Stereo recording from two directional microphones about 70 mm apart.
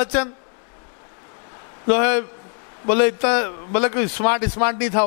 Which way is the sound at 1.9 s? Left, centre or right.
Centre.